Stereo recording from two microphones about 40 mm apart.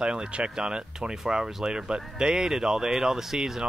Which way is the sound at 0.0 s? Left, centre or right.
Right.